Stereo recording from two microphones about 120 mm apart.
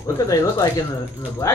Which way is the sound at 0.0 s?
25° left (ahead or behind).